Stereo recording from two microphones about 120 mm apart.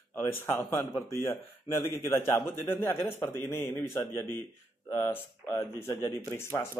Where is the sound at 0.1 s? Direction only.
20° left (ahead or behind).